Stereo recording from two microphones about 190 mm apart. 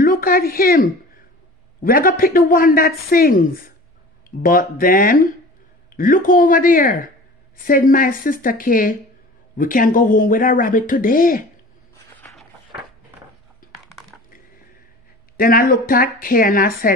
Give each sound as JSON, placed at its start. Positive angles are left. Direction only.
{"t": 0.0, "sound": "speech", "side_deg": 50}
{"t": 15.3, "sound": "speech", "side_deg": 50}